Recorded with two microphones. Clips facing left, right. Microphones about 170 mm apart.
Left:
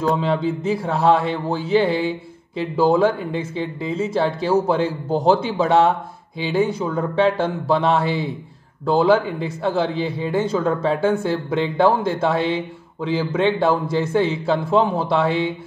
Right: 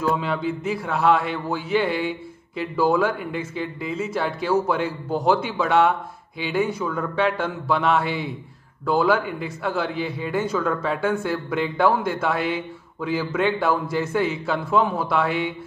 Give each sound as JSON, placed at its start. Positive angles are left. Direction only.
{"t": 0.0, "sound": "a man's voice", "side_deg": 30}